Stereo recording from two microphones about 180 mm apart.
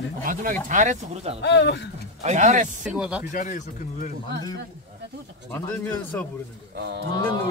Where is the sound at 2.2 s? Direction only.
40° right (ahead or behind).